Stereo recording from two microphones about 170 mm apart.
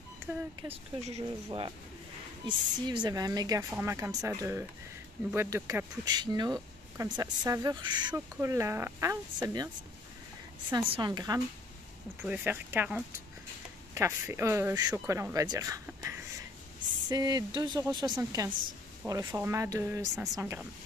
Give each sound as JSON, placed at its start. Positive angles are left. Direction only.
{"t": 0.2, "sound": "a sound", "side_deg": -15}
{"t": 1.0, "sound": "speech", "side_deg": -30}
{"t": 10.9, "sound": "speech", "side_deg": -25}